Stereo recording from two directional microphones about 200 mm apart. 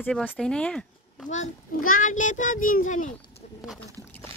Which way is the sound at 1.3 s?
40° left (ahead or behind).